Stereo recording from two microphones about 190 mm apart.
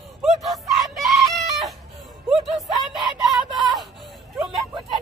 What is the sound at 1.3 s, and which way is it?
Chicken, centre (ahead or behind).